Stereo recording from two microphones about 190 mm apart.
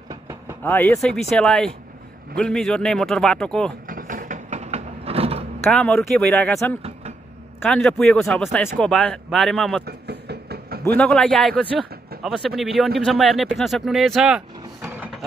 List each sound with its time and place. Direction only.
0.1 s vehicle: 15° right (ahead or behind)
0.7 s a man's voice: 10° left (ahead or behind)
3.8 s a sound: 45° right (ahead or behind); by 5.4 s 30° right (ahead or behind)
5.6 s a man's voice: 5° left (ahead or behind)
6.8 s vehicle: 35° right (ahead or behind)
7.6 s a man's voice: 5° left (ahead or behind)
9.8 s vehicle: 60° right (ahead or behind)
11.0 s a man's voice: 5° left (ahead or behind)